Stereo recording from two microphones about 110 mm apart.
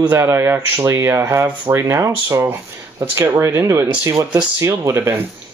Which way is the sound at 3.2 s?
25° right (ahead or behind).